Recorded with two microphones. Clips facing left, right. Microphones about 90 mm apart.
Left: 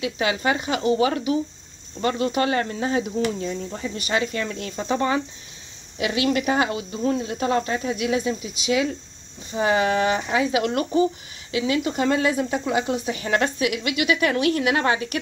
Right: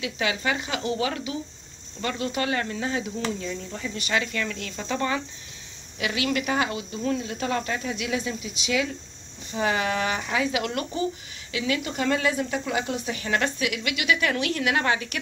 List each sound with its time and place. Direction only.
0.0 s speech: 35° left (ahead or behind)
6.2 s speech: 35° left (ahead or behind)
11.5 s speech: 25° left (ahead or behind)